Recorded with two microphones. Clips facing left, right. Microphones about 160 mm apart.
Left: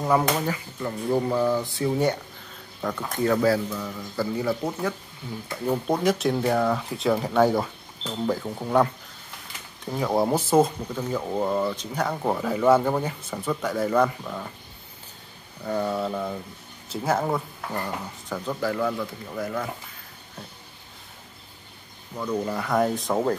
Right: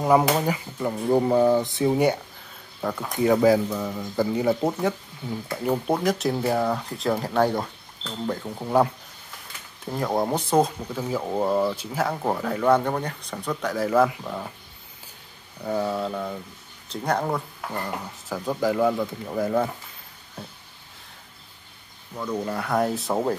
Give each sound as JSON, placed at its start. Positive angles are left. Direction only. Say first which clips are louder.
{"t": 0.2, "sound": "speech", "louder": "right 2 dB", "side_deg": -10}
{"t": 0.7, "sound": "speech", "louder": "right 3 dB", "side_deg": -20}
{"t": 2.8, "sound": "speech", "louder": "right 2 dB", "side_deg": -5}
{"t": 6.0, "sound": "speech", "louder": "left 1 dB", "side_deg": 0}
{"t": 15.6, "sound": "speech", "louder": "even", "side_deg": -5}
{"t": 18.5, "sound": "speech", "louder": "right 4 dB", "side_deg": -15}
{"t": 22.1, "sound": "speech", "louder": "left 1 dB", "side_deg": 0}